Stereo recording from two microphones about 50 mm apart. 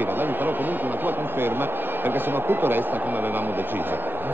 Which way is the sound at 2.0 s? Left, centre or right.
Right.